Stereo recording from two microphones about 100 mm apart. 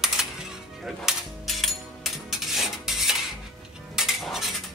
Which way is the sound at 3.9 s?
5° right (ahead or behind).